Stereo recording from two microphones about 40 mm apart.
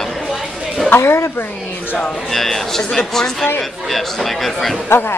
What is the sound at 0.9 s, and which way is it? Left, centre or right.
Speech, left.